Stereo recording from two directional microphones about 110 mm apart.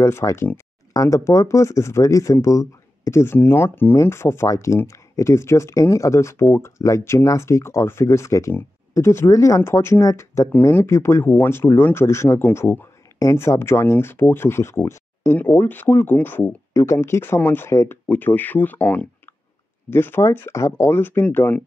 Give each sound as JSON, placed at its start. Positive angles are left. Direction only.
{"t": 0.0, "sound": "speech", "side_deg": 25}